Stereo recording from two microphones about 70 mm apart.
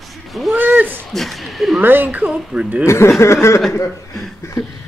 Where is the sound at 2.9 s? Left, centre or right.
Left.